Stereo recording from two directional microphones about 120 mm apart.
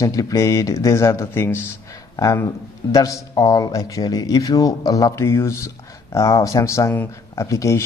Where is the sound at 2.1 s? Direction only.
30° left (ahead or behind).